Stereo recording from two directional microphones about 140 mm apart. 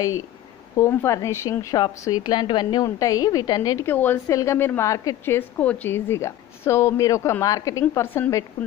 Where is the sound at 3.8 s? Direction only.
15° left (ahead or behind).